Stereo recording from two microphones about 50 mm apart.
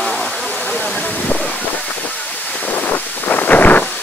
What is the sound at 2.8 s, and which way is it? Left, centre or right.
Wind, left.